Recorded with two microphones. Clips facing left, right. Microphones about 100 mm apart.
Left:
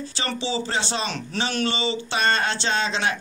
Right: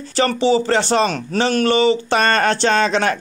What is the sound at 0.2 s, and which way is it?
A man's voice, 55° right (ahead or behind).